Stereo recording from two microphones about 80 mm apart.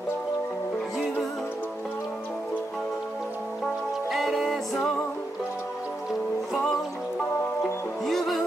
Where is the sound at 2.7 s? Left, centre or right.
Centre.